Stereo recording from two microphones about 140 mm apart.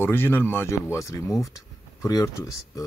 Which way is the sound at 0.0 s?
15° left (ahead or behind).